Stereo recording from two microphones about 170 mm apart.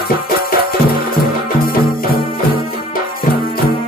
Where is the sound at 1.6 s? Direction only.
60° left (ahead or behind).